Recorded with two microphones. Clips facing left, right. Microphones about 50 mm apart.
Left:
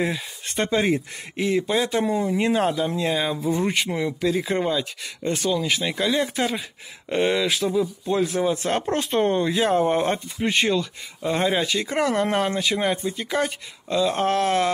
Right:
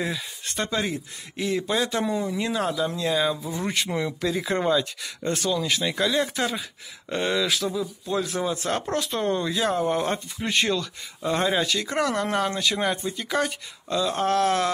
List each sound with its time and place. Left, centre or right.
0.0 s speech: left
2.1 s speech: left
3.0 s speech: left
3.3 s speech: left
3.6 s speech: centre
8.9 s speech: left; by 14.1 s centre
14.1 s speech: left